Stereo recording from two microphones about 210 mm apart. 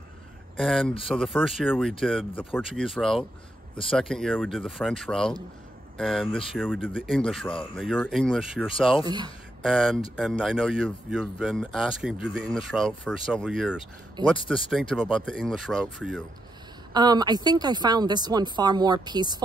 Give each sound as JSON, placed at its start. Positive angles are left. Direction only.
{"t": 0.6, "sound": "speech", "side_deg": 0}
{"t": 9.0, "sound": "a woman's voice", "side_deg": -20}
{"t": 9.6, "sound": "speech", "side_deg": 0}
{"t": 14.2, "sound": "a woman's voice", "side_deg": -20}
{"t": 14.5, "sound": "speech", "side_deg": 0}
{"t": 16.9, "sound": "a woman's voice", "side_deg": -20}